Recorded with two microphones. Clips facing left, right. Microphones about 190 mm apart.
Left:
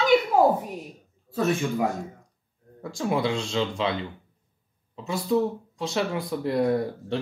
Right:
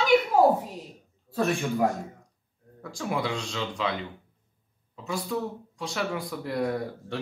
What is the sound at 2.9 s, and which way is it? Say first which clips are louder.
Speech: left 4 dB; 25° left (ahead or behind).